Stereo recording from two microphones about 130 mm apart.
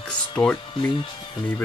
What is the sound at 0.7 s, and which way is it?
Speech, 40° left (ahead or behind).